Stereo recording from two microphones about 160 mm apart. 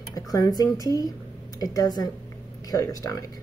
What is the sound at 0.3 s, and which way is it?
Speech, 25° left (ahead or behind).